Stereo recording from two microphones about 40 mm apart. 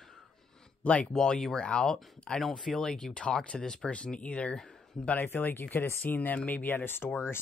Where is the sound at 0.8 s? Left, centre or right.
Left.